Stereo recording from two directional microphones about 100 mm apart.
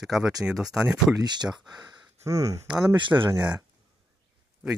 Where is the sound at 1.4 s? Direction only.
5° right (ahead or behind).